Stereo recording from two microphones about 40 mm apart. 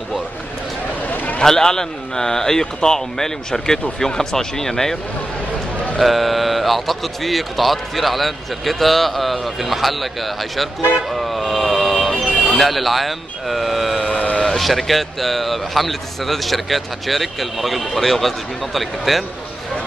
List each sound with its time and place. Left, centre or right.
1.0 s a sound: left
1.4 s speech: centre
5.9 s speech: centre
11.1 s vehicle: centre
12.5 s speech: centre
14.1 s vehicle: left
14.6 s speech: centre